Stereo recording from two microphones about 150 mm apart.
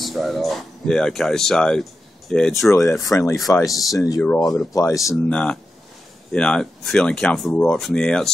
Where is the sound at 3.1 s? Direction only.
15° left (ahead or behind).